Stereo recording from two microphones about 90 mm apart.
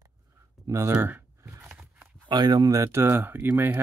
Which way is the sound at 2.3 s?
50° right (ahead or behind).